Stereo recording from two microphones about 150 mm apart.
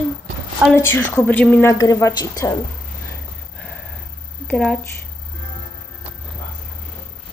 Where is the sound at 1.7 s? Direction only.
20° left (ahead or behind).